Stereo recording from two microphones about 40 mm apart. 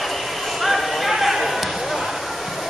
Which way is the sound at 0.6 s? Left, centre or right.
Centre.